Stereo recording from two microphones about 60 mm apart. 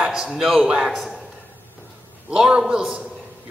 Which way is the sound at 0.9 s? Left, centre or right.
Centre.